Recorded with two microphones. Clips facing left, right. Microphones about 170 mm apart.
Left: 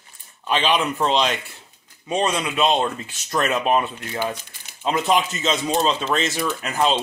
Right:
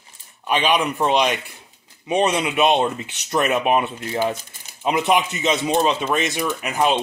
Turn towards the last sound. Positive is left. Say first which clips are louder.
# right 1 dB
turn(degrees=-15)  # may be behind; listen again after turning